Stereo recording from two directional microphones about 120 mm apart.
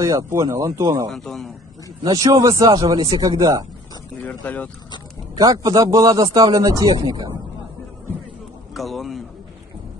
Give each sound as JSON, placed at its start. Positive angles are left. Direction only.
{"t": 0.0, "sound": "speech", "side_deg": -30}
{"t": 1.0, "sound": "a man's voice", "side_deg": 0}
{"t": 2.0, "sound": "speech", "side_deg": -30}
{"t": 4.2, "sound": "speech", "side_deg": 15}
{"t": 5.3, "sound": "speech", "side_deg": -30}
{"t": 8.7, "sound": "a sound", "side_deg": 0}